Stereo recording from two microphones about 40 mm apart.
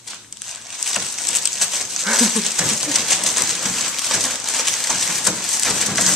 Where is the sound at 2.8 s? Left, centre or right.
Centre.